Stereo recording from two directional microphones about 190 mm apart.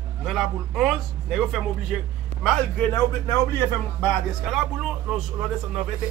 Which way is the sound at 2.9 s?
15° left (ahead or behind).